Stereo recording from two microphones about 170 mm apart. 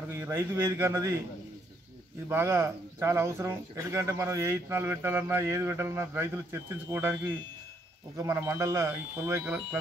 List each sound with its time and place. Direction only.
0.2 s speech: 15° right (ahead or behind)
2.2 s speech: 15° right (ahead or behind)
8.2 s speech: 15° right (ahead or behind)